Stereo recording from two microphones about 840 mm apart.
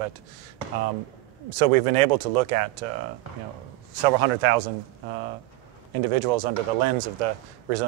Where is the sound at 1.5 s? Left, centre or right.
Right.